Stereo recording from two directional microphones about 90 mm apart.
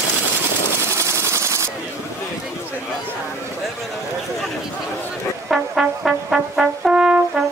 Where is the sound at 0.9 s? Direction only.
30° right (ahead or behind).